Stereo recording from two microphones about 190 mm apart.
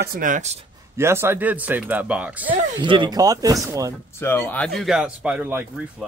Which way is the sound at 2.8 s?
25° right (ahead or behind).